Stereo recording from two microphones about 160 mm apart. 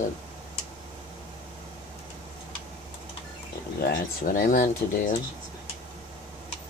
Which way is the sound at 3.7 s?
65° left (ahead or behind).